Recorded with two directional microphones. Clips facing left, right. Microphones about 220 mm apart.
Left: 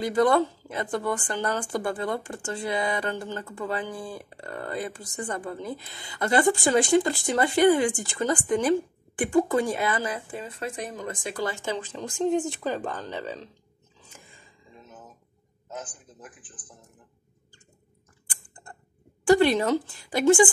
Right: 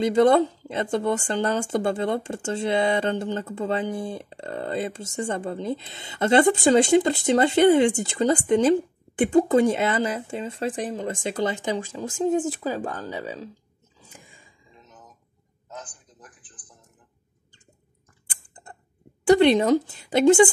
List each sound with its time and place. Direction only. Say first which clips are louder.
0.0 s speech: right 4 dB; 25° right (ahead or behind)
13.9 s a sound: right 2 dB; 10° right (ahead or behind)
16.2 s speech: left 4 dB; 5° left (ahead or behind)
18.2 s typing: right 1 dB; 20° right (ahead or behind)
19.2 s speech: right 3 dB; 20° right (ahead or behind)